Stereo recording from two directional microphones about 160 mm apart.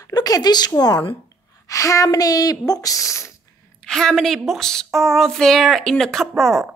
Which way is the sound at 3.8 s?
5° left (ahead or behind).